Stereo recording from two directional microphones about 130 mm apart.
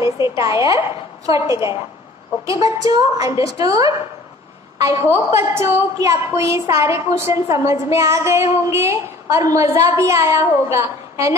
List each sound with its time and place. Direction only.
0.4 s a woman's voice: 25° right (ahead or behind)